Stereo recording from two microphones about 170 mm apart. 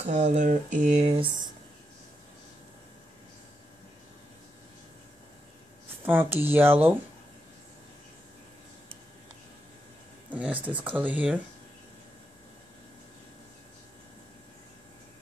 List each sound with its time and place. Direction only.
0.0 s a sound: 45° right (ahead or behind)
6.0 s speech: 10° right (ahead or behind)
10.3 s speech: 10° right (ahead or behind)